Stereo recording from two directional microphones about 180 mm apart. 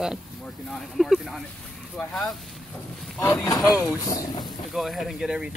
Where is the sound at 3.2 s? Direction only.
20° left (ahead or behind).